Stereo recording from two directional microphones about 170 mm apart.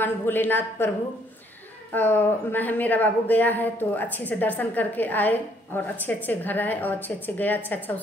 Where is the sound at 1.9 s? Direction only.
10° left (ahead or behind).